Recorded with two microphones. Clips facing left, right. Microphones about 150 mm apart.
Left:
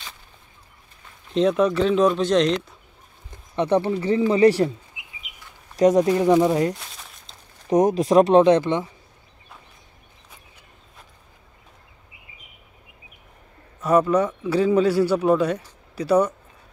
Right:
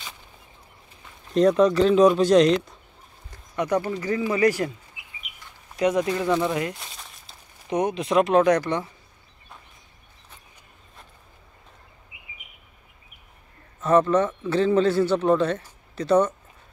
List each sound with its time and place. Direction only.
1.3 s speech: centre (ahead or behind)
3.3 s a sound: 25° left (ahead or behind)
4.3 s speech: 30° left (ahead or behind)
5.8 s speech: 40° left (ahead or behind)
6.1 s speech: 15° left (ahead or behind)
6.7 s crumpling: centre (ahead or behind)
7.6 s speech: 40° left (ahead or behind); by 8.8 s 20° left (ahead or behind)
13.7 s speech: 10° left (ahead or behind)